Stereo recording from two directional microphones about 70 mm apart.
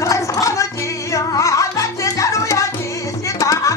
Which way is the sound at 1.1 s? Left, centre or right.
Left.